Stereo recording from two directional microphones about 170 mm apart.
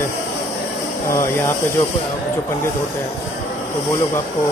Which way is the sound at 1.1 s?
15° left (ahead or behind).